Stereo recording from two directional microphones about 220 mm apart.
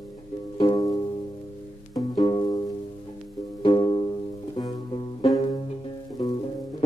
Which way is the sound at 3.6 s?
20° left (ahead or behind).